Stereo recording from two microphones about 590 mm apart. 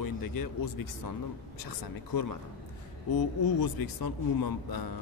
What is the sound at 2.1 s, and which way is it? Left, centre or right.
Speech, left.